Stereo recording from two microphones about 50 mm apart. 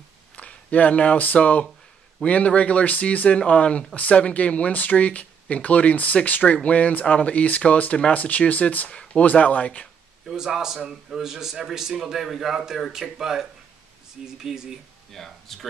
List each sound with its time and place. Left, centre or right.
0.4 s speech: left
10.2 s a man's voice: centre
15.1 s speech: centre